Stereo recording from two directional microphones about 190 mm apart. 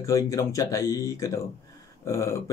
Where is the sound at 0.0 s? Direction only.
15° left (ahead or behind).